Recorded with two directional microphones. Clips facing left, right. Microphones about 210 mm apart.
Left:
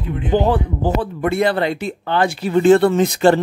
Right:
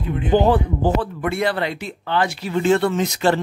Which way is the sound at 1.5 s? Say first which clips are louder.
Left 5 dB; 45° left (ahead or behind).